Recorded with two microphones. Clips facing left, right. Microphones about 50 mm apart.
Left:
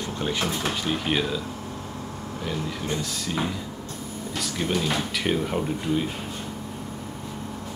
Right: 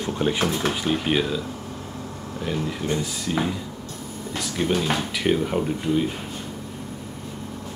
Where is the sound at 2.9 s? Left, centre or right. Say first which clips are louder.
Right 3 dB; centre.